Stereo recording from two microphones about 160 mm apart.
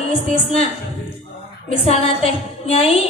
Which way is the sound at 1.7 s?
40° left (ahead or behind).